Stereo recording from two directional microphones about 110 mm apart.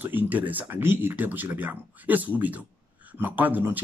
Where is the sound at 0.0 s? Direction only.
15° right (ahead or behind).